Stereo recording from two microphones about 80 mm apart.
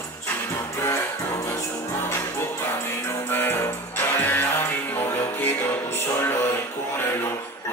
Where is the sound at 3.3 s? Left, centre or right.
Left.